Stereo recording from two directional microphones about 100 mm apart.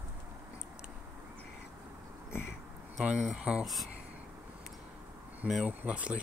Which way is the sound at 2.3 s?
25° left (ahead or behind).